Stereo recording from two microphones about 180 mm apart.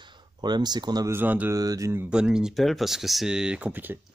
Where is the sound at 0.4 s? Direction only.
25° right (ahead or behind).